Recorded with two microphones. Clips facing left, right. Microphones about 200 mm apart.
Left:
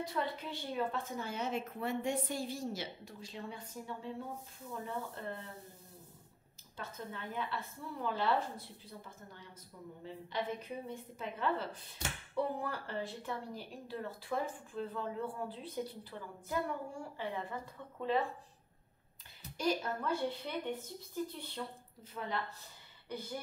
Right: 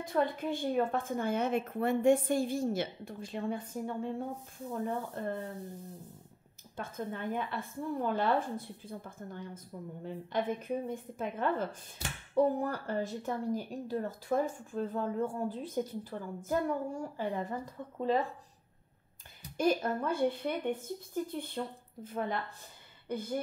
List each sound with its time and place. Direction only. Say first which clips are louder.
0.0 s a woman's voice: right 7 dB; 50° right (ahead or behind)
6.8 s a woman's voice: right 7 dB; 50° right (ahead or behind)
19.5 s a woman's voice: right 5 dB; 50° right (ahead or behind)